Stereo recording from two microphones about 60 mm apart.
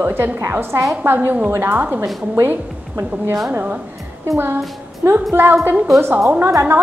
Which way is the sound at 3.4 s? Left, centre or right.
Right.